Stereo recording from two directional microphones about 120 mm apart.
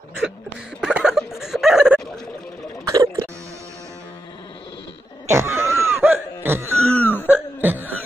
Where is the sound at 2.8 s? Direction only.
30° right (ahead or behind).